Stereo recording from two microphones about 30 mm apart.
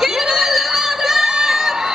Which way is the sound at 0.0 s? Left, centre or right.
Centre.